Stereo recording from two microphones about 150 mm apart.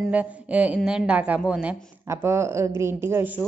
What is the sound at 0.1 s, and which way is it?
A woman's voice, 10° right (ahead or behind).